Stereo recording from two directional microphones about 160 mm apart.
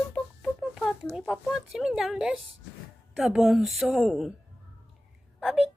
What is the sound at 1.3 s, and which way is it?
A woman's voice, centre (ahead or behind).